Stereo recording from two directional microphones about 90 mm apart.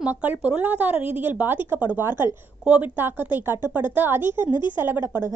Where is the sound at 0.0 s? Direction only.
20° right (ahead or behind).